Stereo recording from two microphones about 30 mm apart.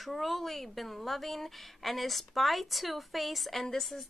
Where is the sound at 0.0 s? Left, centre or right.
Centre.